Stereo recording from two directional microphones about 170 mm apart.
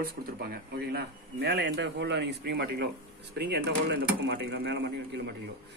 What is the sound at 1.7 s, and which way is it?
A man's voice, 90° right.